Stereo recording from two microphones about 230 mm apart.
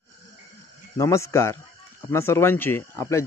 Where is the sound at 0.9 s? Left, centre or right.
Centre.